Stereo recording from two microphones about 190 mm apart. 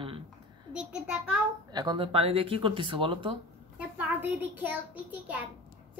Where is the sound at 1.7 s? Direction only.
20° right (ahead or behind).